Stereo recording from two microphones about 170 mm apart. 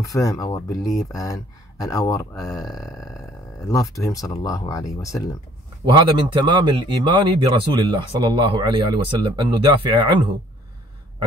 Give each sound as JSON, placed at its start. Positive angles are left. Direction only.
{"t": 0.1, "sound": "speech", "side_deg": 20}
{"t": 5.9, "sound": "speech", "side_deg": -25}